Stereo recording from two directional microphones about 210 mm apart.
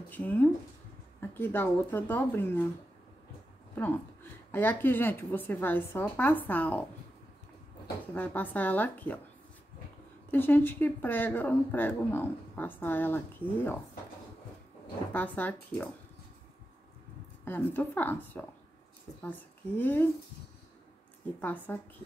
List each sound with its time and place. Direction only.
0.1 s a woman's voice: 10° left (ahead or behind)
3.7 s a woman's voice: 10° left (ahead or behind)
8.1 s a woman's voice: 10° left (ahead or behind)
10.3 s a woman's voice: 10° left (ahead or behind)
15.1 s a woman's voice: 5° left (ahead or behind)
17.5 s a woman's voice: 10° left (ahead or behind)
21.4 s a woman's voice: 10° left (ahead or behind)